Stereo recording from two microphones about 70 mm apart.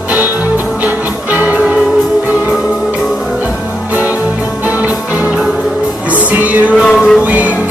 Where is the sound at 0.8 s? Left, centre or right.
Right.